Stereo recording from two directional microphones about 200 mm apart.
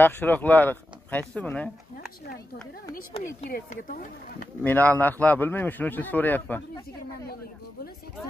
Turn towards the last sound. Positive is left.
turn(degrees=10)  # may be behind; listen again after turning